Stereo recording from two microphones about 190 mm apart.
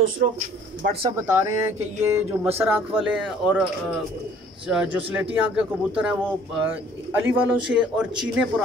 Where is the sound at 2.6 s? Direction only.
10° right (ahead or behind).